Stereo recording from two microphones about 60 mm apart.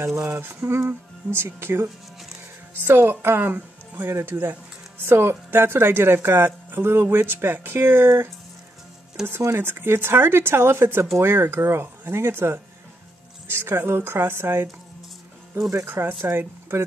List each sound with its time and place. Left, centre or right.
0.4 s speech: right
9.2 s speech: centre
9.6 s speech: right
15.9 s speech: right